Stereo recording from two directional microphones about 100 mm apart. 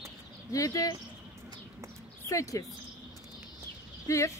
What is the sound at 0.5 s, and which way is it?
Speech, 35° left (ahead or behind).